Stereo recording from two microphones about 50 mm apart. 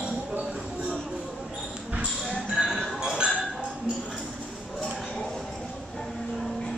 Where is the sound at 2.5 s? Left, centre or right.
Centre.